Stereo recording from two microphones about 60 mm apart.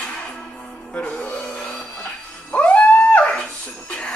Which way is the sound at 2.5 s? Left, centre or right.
Left.